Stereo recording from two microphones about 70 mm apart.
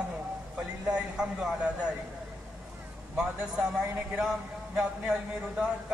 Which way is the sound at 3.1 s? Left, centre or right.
Centre.